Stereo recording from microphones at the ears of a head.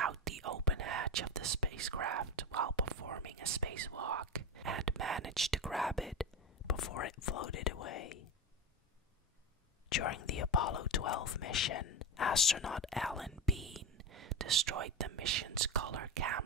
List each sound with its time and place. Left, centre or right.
0.0 s whispering: right
5.7 s speech: centre
6.6 s speech: left
9.8 s speech: left
13.0 s speech: centre
13.9 s speech: right